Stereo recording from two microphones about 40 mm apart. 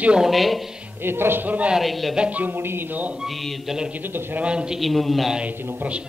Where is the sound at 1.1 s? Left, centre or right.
Right.